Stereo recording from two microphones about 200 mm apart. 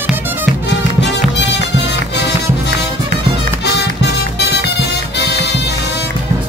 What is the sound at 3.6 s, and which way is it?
Music, 60° left (ahead or behind).